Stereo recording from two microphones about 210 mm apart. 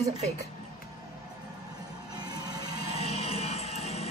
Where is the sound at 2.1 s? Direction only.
20° right (ahead or behind).